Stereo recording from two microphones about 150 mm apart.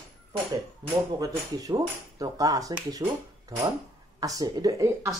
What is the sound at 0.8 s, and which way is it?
Speech, 30° right (ahead or behind).